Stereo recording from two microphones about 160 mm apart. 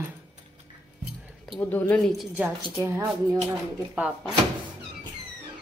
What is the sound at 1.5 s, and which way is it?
Speech, 10° left (ahead or behind).